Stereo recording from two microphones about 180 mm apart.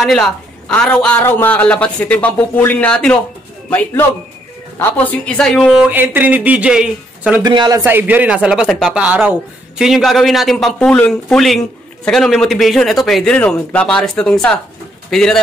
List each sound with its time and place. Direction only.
0.0 s a man's voice: centre (ahead or behind)
4.7 s speech: 10° left (ahead or behind)
7.4 s speech: 25° right (ahead or behind)
7.8 s speech: 10° right (ahead or behind)